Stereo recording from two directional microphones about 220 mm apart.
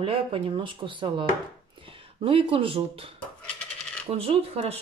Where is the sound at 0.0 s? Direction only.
25° right (ahead or behind).